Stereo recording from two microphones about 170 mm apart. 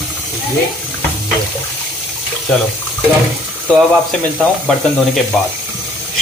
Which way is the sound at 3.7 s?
5° left (ahead or behind).